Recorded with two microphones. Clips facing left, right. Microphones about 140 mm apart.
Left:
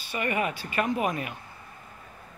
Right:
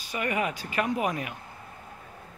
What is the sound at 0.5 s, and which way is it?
Speech, 15° right (ahead or behind).